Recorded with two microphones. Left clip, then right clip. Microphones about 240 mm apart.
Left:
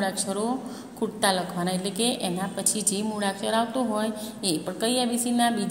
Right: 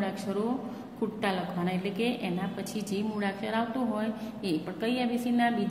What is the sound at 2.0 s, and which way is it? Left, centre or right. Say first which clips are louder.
A woman's voice: left 5 dB; centre.